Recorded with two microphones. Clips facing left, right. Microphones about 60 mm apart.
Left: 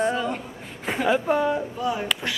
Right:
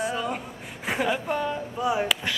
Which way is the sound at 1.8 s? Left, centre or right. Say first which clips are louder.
Right 1 dB; centre.